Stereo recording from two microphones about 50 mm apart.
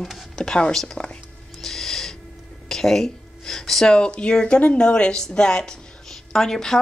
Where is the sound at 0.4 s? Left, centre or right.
Centre.